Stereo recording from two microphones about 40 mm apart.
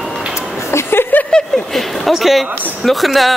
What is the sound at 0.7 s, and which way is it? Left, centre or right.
Speech, left.